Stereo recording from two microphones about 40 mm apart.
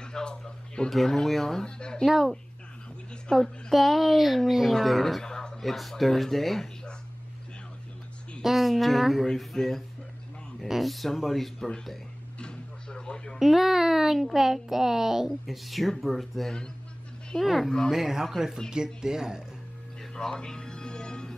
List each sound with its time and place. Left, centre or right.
0.0 s a sound: centre
0.8 s speech: centre
1.8 s speech: left
2.0 s speech: centre
3.3 s speech: centre
3.7 s speech: centre
5.2 s a sound: centre
5.7 s speech: centre
8.4 s speech: centre
12.4 s a sound: left
13.4 s a child's voice: centre
16.4 s speech: centre
17.4 s a child's voice: centre
20.0 s music: centre